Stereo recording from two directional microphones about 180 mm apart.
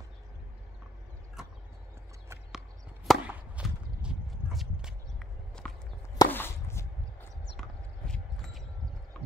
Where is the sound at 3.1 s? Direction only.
5° right (ahead or behind).